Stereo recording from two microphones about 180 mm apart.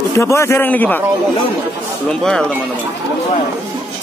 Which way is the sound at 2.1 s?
5° left (ahead or behind).